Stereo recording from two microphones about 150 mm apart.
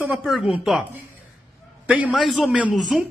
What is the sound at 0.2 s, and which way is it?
Speech, centre (ahead or behind).